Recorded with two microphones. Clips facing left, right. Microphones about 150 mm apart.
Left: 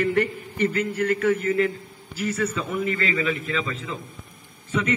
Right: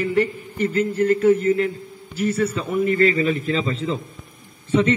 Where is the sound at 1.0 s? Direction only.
30° right (ahead or behind).